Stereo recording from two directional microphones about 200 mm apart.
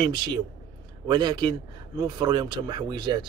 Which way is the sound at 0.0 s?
20° right (ahead or behind).